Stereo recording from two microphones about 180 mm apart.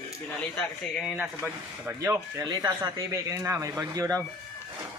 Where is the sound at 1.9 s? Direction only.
15° right (ahead or behind).